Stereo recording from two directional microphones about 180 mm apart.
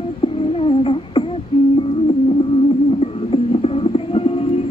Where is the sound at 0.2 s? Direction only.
30° left (ahead or behind).